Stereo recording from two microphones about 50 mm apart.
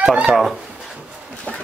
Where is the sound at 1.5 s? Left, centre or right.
Centre.